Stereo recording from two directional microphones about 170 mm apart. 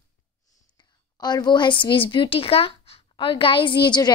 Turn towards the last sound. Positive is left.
turn(degrees=25)  # may be behind; listen again after turning